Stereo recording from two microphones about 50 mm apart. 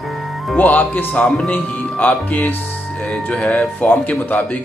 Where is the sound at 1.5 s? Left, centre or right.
Left.